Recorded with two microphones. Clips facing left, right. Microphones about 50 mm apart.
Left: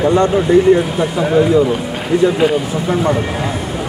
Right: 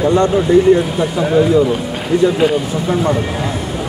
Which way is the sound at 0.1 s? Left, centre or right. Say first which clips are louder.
Right 1 dB; centre.